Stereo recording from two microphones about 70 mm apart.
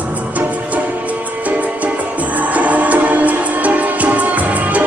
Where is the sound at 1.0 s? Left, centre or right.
Right.